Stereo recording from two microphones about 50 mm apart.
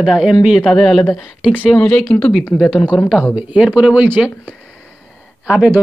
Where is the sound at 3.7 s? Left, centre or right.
Right.